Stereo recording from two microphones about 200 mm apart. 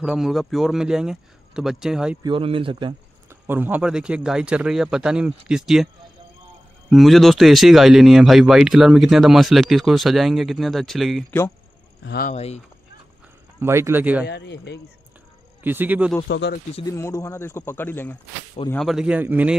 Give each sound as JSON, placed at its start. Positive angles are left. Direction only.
{"t": 0.0, "sound": "speech", "side_deg": 0}
{"t": 2.2, "sound": "speech", "side_deg": -25}
{"t": 3.3, "sound": "speech", "side_deg": -10}
{"t": 6.9, "sound": "speech", "side_deg": 0}
{"t": 12.0, "sound": "speech", "side_deg": 55}
{"t": 12.3, "sound": "speech", "side_deg": 30}
{"t": 13.6, "sound": "speech", "side_deg": -15}
{"t": 14.2, "sound": "speech", "side_deg": 55}
{"t": 15.6, "sound": "speech", "side_deg": -10}
{"t": 16.3, "sound": "speech", "side_deg": 60}
{"t": 16.8, "sound": "speech", "side_deg": 15}